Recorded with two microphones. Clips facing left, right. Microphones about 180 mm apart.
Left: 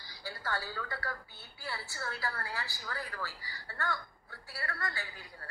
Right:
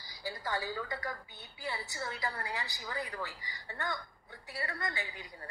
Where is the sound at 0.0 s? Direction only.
15° right (ahead or behind).